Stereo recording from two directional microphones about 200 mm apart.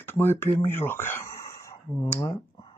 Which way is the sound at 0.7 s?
10° left (ahead or behind).